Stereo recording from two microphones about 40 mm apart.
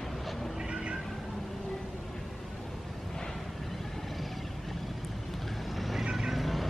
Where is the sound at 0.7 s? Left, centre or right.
Right.